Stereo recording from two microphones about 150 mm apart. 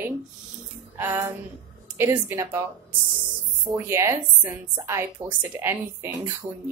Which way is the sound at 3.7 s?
15° right (ahead or behind).